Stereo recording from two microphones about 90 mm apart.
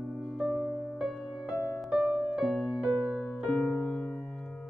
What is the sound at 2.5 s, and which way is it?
Music, 5° left (ahead or behind).